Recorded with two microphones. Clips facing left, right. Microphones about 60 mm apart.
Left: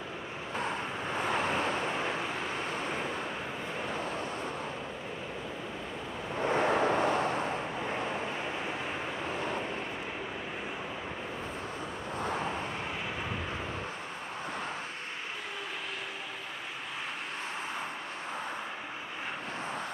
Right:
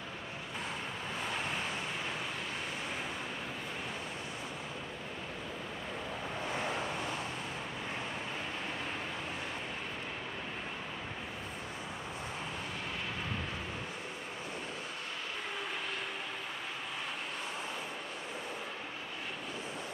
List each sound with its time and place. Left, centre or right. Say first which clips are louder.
0.6 s vehicle: left 7 dB; left
6.5 s vehicle: left 11 dB; left